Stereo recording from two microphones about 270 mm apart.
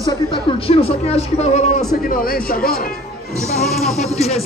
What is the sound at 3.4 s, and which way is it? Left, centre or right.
Music, centre.